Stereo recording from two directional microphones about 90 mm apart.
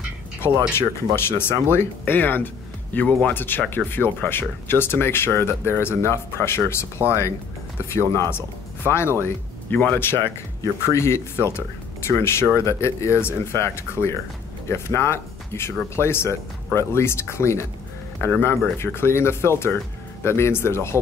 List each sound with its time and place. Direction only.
0.7 s speech: 25° left (ahead or behind)
7.9 s speech: 30° left (ahead or behind)